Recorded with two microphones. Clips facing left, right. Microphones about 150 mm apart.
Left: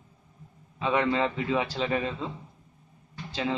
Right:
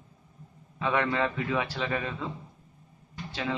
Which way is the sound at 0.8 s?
20° left (ahead or behind).